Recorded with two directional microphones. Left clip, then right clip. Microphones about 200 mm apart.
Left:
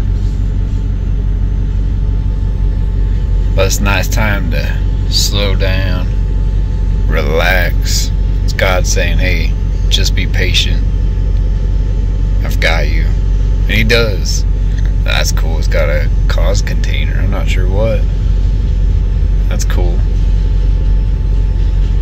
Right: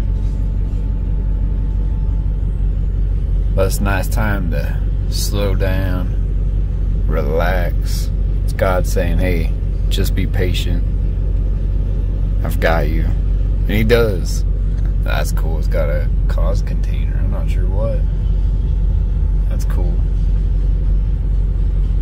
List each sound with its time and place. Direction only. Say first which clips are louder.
3.5 s speech: left 5 dB; 25° right (ahead or behind)
7.1 s speech: left 6 dB; 20° right (ahead or behind)
12.5 s speech: left 2 dB; 35° right (ahead or behind)
15.7 s speech: left 6 dB; 15° right (ahead or behind)
17.3 s speech: left 8 dB; 5° left (ahead or behind)